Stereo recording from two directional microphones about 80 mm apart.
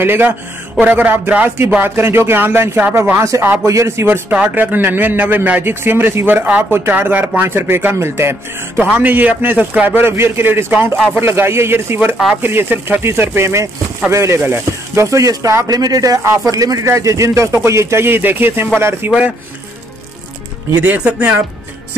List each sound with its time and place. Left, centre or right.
0.0 s a man's voice: right
19.0 s a man's voice: centre
20.8 s a man's voice: centre